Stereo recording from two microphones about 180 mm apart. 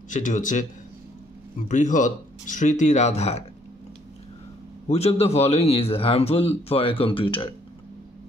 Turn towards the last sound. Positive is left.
turn(degrees=30)  # may be behind; listen again after turning